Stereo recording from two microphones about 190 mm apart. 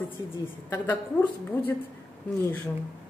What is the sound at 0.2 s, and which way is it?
A woman's voice, 20° left (ahead or behind).